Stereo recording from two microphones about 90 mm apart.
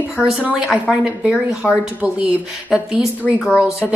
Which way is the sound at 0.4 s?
15° right (ahead or behind).